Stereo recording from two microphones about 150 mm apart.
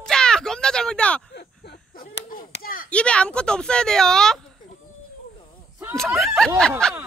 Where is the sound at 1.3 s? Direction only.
90° left; by 2.9 s 75° left (ahead or behind).